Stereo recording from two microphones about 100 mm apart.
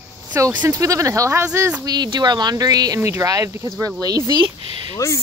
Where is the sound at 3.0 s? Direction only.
30° right (ahead or behind).